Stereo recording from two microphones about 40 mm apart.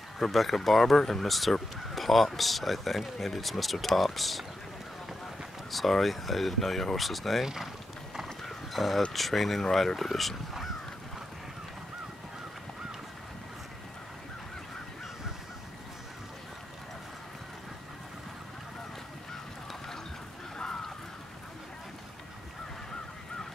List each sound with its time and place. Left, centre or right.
0.2 s speech: centre
5.7 s speech: centre
7.4 s speech: centre
8.5 s horse: centre
9.1 s speech: centre
20.5 s a sound: centre